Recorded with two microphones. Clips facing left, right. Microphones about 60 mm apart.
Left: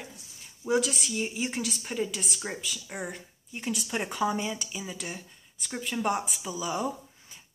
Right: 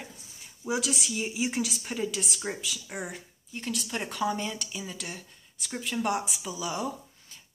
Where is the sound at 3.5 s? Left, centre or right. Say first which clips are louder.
Left 2 dB; centre.